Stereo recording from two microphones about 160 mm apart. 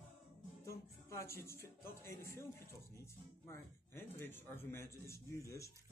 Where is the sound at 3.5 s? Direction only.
15° left (ahead or behind).